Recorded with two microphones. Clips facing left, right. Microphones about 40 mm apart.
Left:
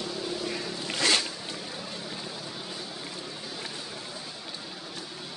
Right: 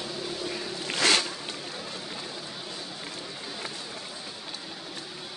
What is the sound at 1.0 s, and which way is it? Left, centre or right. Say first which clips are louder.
Zipper: right 2 dB; right.